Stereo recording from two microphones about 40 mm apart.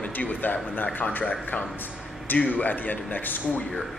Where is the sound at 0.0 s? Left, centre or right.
Left.